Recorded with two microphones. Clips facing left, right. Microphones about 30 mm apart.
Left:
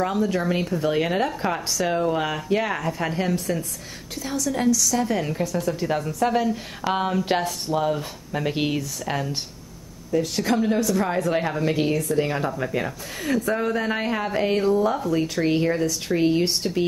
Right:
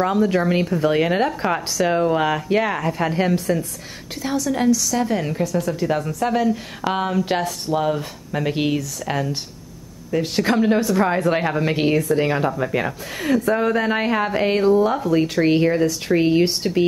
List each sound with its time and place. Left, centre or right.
0.0 s speech: centre
5.4 s speech: centre
5.7 s speech: centre
7.7 s speech: centre
10.2 s speech: right
15.3 s speech: centre